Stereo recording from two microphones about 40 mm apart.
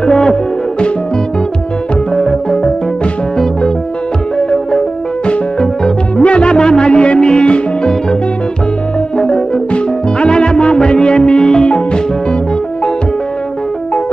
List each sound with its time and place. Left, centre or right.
0.0 s music: centre
2.1 s music: centre
5.2 s music: left
10.2 s music: left